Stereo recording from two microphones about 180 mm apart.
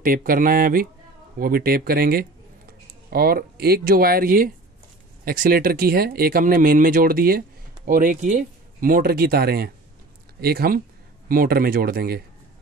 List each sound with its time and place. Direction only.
0.0 s speech: 50° right (ahead or behind)